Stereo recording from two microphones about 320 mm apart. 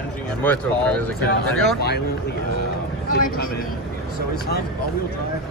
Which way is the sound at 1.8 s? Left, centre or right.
Left.